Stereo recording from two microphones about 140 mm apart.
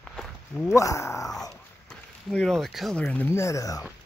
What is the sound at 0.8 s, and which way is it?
Speech, 20° left (ahead or behind).